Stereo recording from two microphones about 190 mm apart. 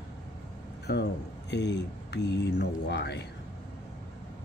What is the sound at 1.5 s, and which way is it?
Speech, 65° left (ahead or behind).